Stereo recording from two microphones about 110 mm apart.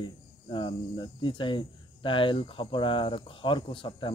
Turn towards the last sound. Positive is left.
turn(degrees=50)  # may be behind; listen again after turning